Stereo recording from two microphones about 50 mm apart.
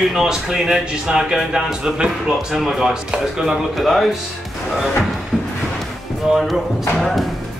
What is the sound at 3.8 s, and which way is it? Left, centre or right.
Speech, centre.